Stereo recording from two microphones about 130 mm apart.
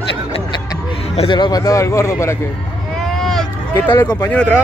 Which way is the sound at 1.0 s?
50° left (ahead or behind).